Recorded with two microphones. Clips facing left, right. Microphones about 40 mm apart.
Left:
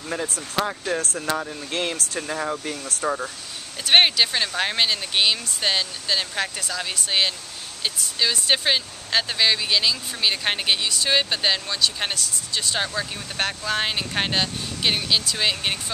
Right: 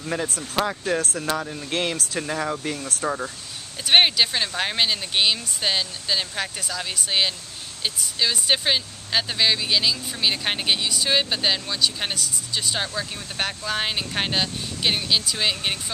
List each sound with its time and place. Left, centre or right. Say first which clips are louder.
0.0 s speech: right 1 dB; centre
2.6 s speech: right 2 dB; right
3.0 s speech: left 4 dB; centre